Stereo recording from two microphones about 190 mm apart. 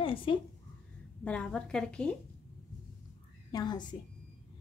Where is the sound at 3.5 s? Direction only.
20° left (ahead or behind).